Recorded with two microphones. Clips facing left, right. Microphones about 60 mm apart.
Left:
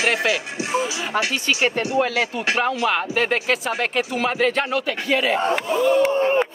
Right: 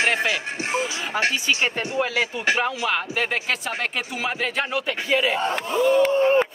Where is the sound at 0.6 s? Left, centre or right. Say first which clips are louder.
Left 2 dB; right.